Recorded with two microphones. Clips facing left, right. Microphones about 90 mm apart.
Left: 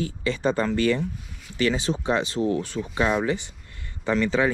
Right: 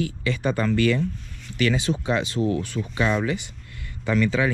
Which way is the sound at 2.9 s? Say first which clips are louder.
Even; 50° left (ahead or behind).